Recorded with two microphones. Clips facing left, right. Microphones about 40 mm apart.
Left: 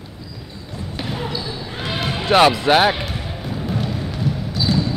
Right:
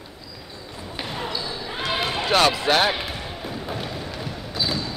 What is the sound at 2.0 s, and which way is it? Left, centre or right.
Music, centre.